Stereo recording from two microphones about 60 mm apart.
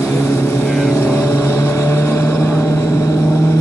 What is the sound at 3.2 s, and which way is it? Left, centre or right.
Vehicle, left.